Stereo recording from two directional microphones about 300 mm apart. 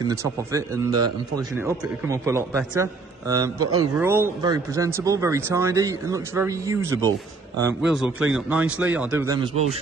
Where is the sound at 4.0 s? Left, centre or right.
Centre.